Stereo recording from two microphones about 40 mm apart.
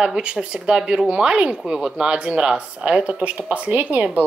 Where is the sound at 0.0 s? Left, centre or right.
Right.